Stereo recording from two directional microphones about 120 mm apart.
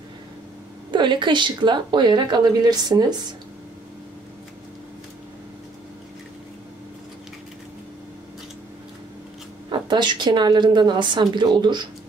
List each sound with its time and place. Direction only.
0.9 s speech: 40° right (ahead or behind)
9.7 s speech: 40° right (ahead or behind)